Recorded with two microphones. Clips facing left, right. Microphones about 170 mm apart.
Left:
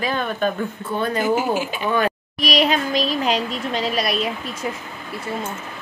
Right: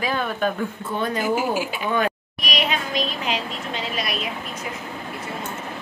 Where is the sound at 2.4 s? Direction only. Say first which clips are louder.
Left 6 dB; 35° left (ahead or behind).